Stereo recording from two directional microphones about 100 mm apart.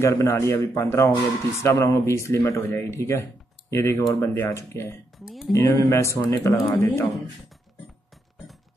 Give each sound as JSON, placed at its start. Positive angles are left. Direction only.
{"t": 0.0, "sound": "speech", "side_deg": 30}
{"t": 5.2, "sound": "speech", "side_deg": -5}
{"t": 5.5, "sound": "speech", "side_deg": 30}